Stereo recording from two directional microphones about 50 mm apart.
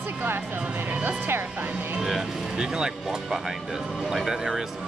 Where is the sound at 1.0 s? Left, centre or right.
Right.